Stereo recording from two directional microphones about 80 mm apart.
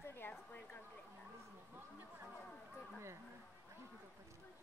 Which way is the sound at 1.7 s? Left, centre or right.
Right.